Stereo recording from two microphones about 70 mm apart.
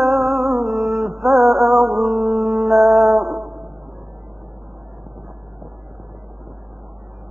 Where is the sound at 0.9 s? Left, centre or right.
Right.